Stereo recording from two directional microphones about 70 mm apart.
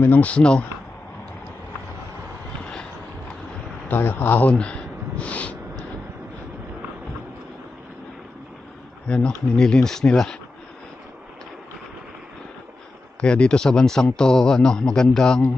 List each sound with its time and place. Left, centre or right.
0.0 s speech: left
0.3 s speech: centre
3.9 s a sound: left
9.1 s speech: centre
13.2 s speech: centre